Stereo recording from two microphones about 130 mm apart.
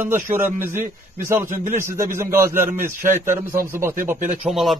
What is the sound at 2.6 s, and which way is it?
Speech, 90° right.